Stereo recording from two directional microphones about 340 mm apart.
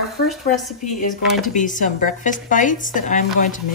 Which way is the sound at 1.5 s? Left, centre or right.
Left.